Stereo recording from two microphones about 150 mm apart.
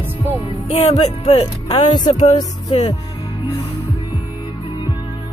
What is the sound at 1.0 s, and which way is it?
Speech, 45° left (ahead or behind).